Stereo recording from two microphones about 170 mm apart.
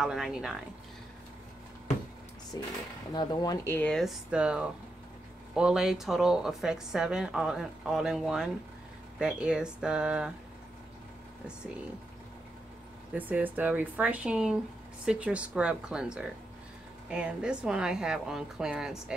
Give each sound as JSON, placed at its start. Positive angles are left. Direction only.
{"t": 0.0, "sound": "a woman's voice", "side_deg": -5}
{"t": 2.5, "sound": "a woman's voice", "side_deg": 20}
{"t": 13.1, "sound": "a woman's voice", "side_deg": -10}